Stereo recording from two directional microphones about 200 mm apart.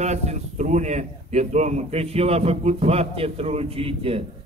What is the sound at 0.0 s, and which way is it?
A man's voice, 35° right (ahead or behind).